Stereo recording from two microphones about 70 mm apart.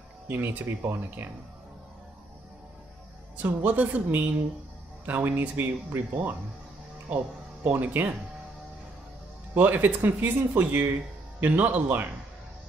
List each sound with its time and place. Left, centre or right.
0.3 s speech: right
3.3 s speech: right
7.6 s speech: right
9.6 s speech: right